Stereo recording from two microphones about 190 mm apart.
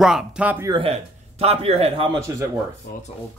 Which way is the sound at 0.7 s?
30° right (ahead or behind).